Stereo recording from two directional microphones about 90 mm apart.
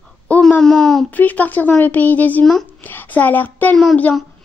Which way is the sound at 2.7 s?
20° left (ahead or behind).